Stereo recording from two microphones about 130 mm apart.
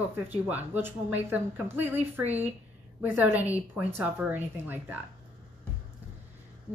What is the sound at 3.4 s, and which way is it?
A woman's voice, 10° right (ahead or behind).